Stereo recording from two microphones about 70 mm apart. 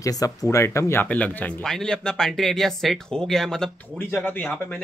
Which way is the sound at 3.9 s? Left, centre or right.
Left.